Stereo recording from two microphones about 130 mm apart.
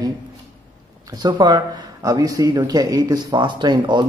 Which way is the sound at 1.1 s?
30° right (ahead or behind).